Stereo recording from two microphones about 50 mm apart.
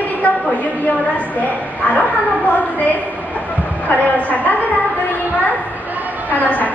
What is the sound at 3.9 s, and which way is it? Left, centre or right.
Speech, left.